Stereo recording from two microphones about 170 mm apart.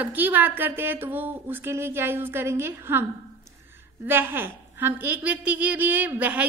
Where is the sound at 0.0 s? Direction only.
10° right (ahead or behind).